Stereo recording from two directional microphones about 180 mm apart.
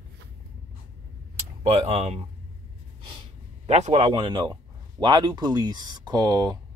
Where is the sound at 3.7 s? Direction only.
40° right (ahead or behind).